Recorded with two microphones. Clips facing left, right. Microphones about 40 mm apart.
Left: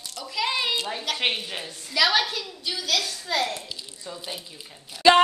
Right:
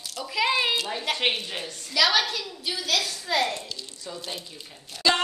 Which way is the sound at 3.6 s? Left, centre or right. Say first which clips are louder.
Even; centre.